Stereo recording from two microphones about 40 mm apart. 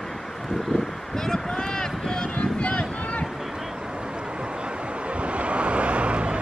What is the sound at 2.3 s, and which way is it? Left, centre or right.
Boat, left.